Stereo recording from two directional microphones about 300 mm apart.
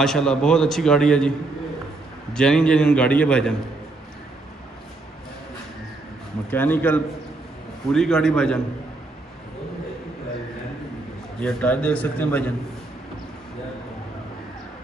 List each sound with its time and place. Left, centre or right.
0.0 s a man's voice: centre
2.3 s a man's voice: centre
6.5 s a man's voice: centre
11.4 s a man's voice: centre